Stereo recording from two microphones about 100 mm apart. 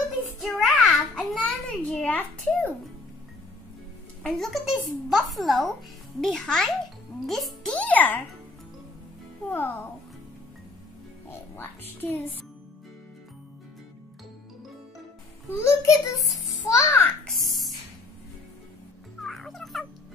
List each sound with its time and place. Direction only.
0.4 s a sound: centre (ahead or behind)
1.4 s a sound: 15° left (ahead or behind)
4.2 s speech: centre (ahead or behind)
7.7 s a child's voice: 15° left (ahead or behind)
9.5 s a child's voice: 20° left (ahead or behind)
11.2 s a child's voice: 20° left (ahead or behind)
15.5 s a child's voice: 30° left (ahead or behind)
19.2 s music: 5° left (ahead or behind)